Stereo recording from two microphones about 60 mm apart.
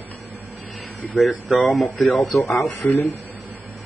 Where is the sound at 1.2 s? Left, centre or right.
Centre.